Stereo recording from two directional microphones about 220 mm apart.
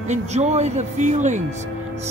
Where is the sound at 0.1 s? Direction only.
30° right (ahead or behind).